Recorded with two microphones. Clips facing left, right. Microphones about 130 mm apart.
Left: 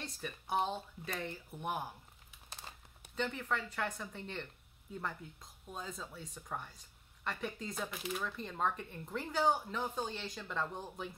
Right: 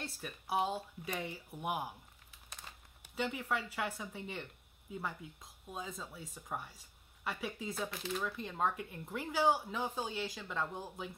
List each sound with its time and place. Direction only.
0.0 s speech: 5° right (ahead or behind)
2.7 s a sound: 35° left (ahead or behind)
3.2 s speech: 10° right (ahead or behind)